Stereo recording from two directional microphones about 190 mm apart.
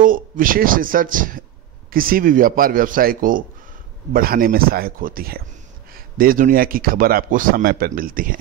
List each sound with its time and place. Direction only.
0.0 s a man's voice: 45° right (ahead or behind)